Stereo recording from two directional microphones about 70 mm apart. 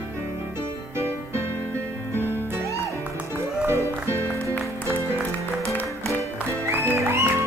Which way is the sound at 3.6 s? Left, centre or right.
Right.